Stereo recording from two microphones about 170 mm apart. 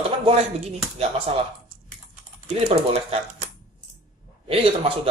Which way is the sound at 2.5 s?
35° right (ahead or behind).